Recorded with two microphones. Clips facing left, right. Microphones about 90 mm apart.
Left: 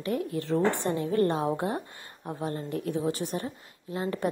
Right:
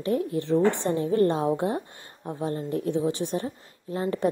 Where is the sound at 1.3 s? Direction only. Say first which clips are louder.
Right 3 dB; 25° left (ahead or behind).